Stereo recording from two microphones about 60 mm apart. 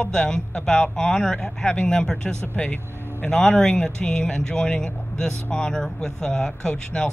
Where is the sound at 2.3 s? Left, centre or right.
Right.